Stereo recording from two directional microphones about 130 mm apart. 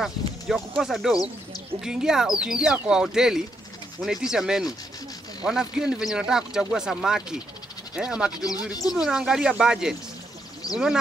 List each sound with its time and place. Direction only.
0.0 s speech: centre (ahead or behind)
10.6 s speech: 30° left (ahead or behind)